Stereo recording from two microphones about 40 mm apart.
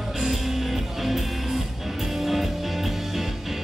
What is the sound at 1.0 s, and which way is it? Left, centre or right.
Music, centre.